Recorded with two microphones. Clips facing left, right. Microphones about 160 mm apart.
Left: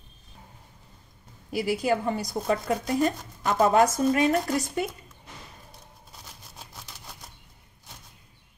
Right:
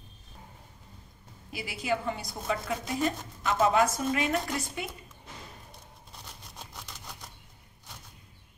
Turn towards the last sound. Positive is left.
turn(degrees=5)  # may be behind; listen again after turning